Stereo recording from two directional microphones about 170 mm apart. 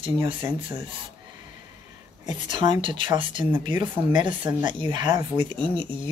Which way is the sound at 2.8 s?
30° right (ahead or behind).